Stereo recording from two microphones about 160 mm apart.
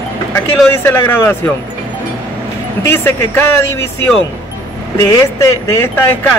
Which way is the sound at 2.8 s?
15° left (ahead or behind).